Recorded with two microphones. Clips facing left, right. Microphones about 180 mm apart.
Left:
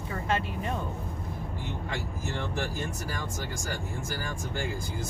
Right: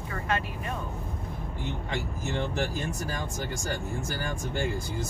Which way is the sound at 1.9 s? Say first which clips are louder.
Right 3 dB; 20° right (ahead or behind).